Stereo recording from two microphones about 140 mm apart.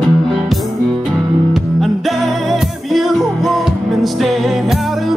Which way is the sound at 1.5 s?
Centre (ahead or behind).